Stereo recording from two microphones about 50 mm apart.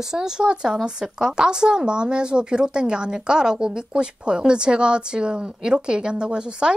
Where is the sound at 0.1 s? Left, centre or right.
Centre.